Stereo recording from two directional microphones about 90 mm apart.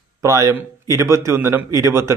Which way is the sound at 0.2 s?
35° right (ahead or behind).